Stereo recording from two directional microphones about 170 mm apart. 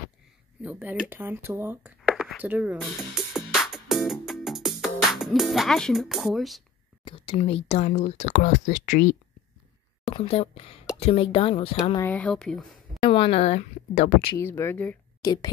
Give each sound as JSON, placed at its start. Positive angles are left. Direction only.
{"t": 0.6, "sound": "speech", "side_deg": -10}
{"t": 2.0, "sound": "speech", "side_deg": 0}
{"t": 3.6, "sound": "music", "side_deg": 0}
{"t": 7.1, "sound": "speech", "side_deg": 30}
{"t": 10.1, "sound": "speech", "side_deg": 35}
{"t": 12.0, "sound": "speech", "side_deg": 10}
{"t": 13.0, "sound": "speech", "side_deg": 30}
{"t": 14.3, "sound": "speech", "side_deg": 15}
{"t": 15.2, "sound": "speech", "side_deg": 25}